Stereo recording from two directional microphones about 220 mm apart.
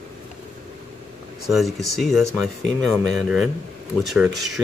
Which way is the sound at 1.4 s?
Centre (ahead or behind).